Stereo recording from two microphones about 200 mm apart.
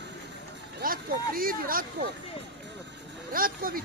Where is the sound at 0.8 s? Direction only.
45° right (ahead or behind).